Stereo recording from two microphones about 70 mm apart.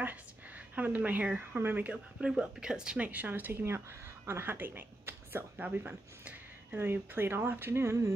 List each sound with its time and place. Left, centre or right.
0.7 s speech: right
5.6 s speech: right